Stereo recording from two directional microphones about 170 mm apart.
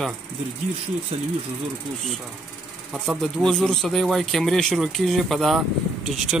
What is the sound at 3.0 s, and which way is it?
Speech, centre (ahead or behind).